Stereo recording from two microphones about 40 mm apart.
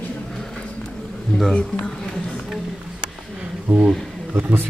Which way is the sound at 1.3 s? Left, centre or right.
Left.